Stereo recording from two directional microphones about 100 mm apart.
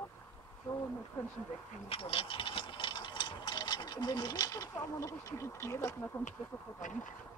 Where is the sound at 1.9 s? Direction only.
70° left (ahead or behind); by 6.2 s 30° left (ahead or behind).